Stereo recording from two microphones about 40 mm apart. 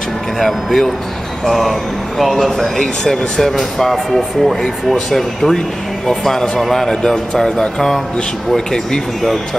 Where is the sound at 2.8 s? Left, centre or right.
Centre.